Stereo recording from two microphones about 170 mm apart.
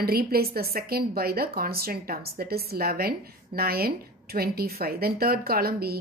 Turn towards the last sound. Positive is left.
turn(degrees=-65)  # may be behind; listen again after turning